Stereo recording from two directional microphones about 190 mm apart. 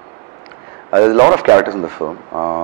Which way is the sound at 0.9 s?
20° right (ahead or behind).